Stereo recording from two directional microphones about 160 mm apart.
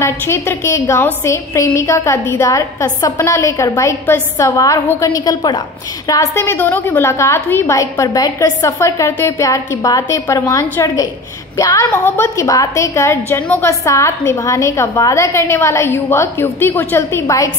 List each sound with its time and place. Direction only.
0.0 s a woman's voice: 15° left (ahead or behind)